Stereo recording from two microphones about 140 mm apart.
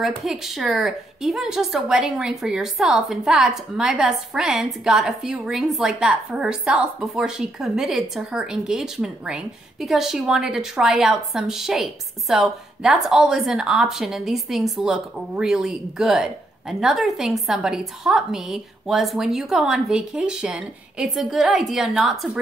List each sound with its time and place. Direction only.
0.0 s speech: centre (ahead or behind)